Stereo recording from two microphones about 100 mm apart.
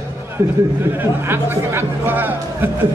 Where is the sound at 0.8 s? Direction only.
20° right (ahead or behind).